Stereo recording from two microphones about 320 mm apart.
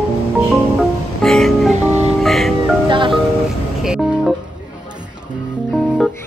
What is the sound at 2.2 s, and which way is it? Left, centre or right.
Music, centre.